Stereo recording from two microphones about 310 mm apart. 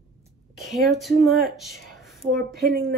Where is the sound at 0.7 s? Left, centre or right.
Centre.